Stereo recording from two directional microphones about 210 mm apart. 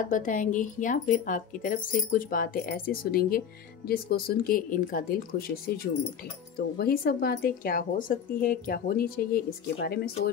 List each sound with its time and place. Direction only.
0.1 s speech: 40° left (ahead or behind)